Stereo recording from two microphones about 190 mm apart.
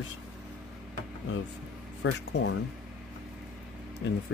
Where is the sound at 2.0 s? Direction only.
70° left (ahead or behind).